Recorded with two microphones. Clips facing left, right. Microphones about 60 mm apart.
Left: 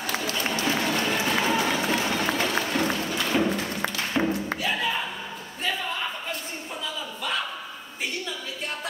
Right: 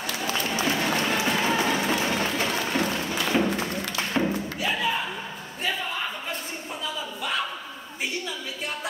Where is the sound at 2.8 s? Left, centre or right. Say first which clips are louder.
Even; centre.